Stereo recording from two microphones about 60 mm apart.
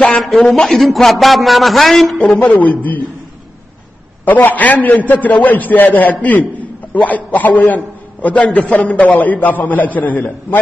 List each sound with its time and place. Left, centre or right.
0.4 s a man's voice: centre
2.3 s a man's voice: left
4.2 s a man's voice: left